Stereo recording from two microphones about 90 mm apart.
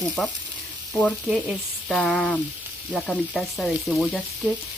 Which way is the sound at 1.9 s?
5° left (ahead or behind).